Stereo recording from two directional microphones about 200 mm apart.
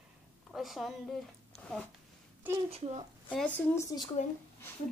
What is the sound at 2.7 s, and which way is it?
Speech, 30° right (ahead or behind).